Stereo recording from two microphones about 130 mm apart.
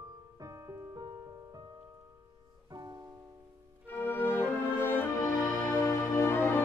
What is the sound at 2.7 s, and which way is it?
Music, 30° right (ahead or behind).